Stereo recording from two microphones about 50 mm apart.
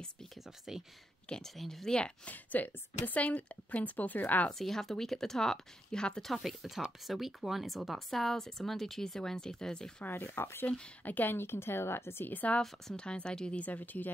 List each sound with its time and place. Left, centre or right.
1.3 s speech: centre
2.0 s a woman's voice: left
4.5 s speech: centre
6.2 s speech: centre
10.0 s speech: left
10.7 s a woman's voice: left
11.3 s speech: left
12.3 s a woman's voice: left
12.9 s speech: centre
13.6 s a woman's voice: left